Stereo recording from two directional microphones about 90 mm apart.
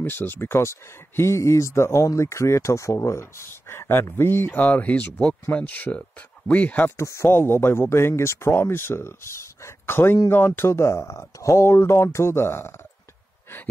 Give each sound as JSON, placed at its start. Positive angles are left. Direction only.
{"t": 0.1, "sound": "speech", "side_deg": 25}
{"t": 7.0, "sound": "speech", "side_deg": 30}